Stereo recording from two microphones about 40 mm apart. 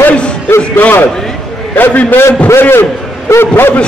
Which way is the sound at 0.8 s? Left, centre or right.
Left.